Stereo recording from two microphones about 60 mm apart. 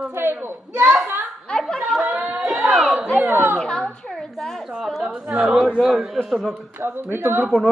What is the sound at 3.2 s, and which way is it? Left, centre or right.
Speech, right.